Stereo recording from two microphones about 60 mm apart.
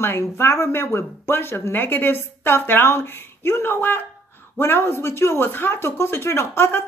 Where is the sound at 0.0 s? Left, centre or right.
Left.